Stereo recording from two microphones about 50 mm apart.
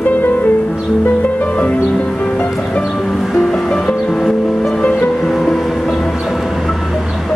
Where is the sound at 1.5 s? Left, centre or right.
Left.